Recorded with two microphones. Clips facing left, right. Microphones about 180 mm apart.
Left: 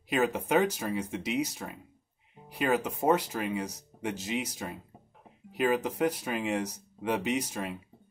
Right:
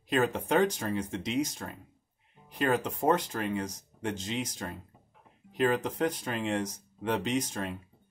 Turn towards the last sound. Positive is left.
turn(degrees=10)  # may be behind; listen again after turning